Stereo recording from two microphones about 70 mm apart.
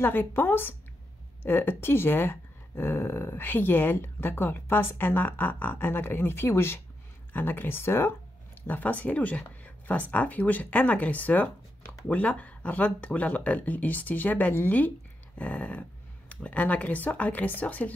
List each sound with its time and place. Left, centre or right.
0.0 s speech: left
8.6 s speech: left